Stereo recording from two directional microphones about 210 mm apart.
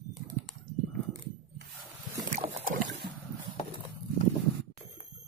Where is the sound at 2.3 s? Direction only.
35° right (ahead or behind).